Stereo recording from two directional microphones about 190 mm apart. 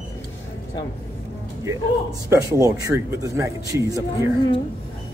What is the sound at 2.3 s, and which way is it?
A man's voice, 15° right (ahead or behind).